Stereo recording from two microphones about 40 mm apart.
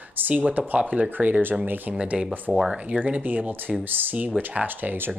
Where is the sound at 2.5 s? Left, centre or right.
Centre.